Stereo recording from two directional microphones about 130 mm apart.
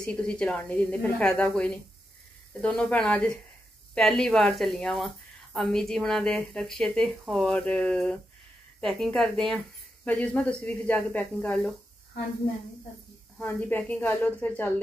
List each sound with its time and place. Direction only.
0.0 s a woman's voice: 5° left (ahead or behind)
13.4 s a woman's voice: 15° left (ahead or behind)